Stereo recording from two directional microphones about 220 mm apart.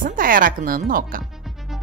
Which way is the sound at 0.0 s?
40° right (ahead or behind).